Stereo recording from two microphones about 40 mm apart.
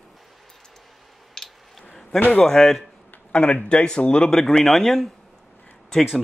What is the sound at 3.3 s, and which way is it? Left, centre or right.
Speech, left.